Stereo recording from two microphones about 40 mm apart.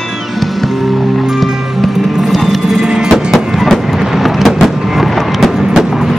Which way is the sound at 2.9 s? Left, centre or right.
Centre.